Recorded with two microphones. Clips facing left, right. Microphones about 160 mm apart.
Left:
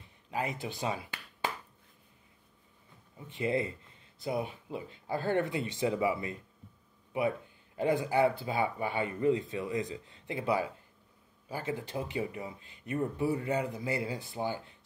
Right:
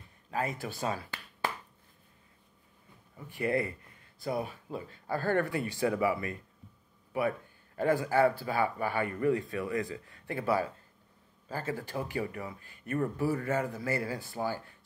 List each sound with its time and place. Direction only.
0.3 s speech: 20° left (ahead or behind)
3.2 s speech: 20° left (ahead or behind)